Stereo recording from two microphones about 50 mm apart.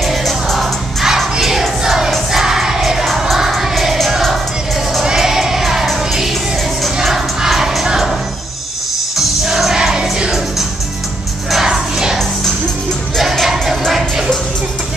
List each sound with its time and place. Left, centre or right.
0.0 s music: centre
1.0 s music: centre
9.1 s music: centre
9.8 s music: centre
11.5 s music: centre
13.4 s music: centre